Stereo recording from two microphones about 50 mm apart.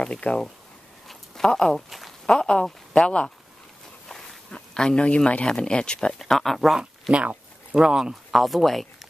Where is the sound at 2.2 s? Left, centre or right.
Centre.